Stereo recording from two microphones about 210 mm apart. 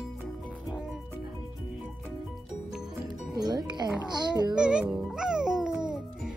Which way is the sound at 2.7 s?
Centre (ahead or behind).